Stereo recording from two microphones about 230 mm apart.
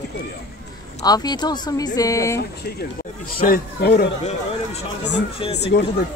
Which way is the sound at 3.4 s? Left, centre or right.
Left.